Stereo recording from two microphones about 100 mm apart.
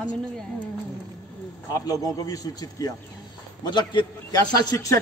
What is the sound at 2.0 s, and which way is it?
Speech, 40° left (ahead or behind).